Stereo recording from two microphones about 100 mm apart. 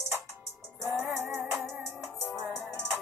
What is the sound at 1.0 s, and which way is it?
Music, 15° right (ahead or behind).